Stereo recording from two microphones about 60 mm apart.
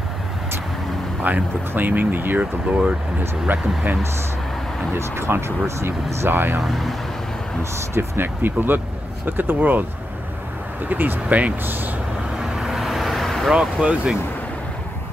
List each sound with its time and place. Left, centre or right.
1.3 s speech: right
3.5 s speech: right
4.9 s speech: right
6.7 s speech: centre
7.9 s speech: right
8.4 s speech: right
10.9 s speech: right
12.4 s vehicle: centre
13.5 s speech: centre